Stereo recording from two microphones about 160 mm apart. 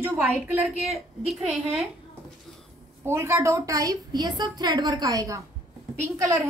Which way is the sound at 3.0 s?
15° right (ahead or behind).